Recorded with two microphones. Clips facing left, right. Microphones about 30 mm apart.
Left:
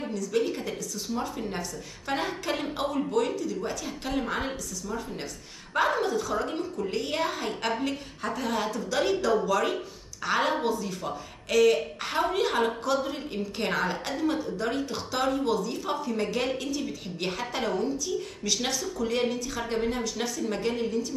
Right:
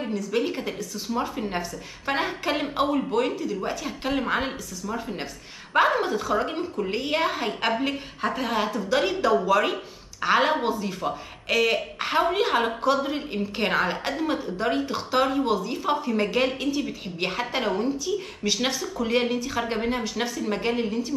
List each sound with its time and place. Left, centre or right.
0.0 s speech: right